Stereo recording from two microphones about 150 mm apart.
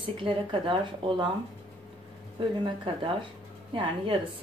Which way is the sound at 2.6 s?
35° right (ahead or behind).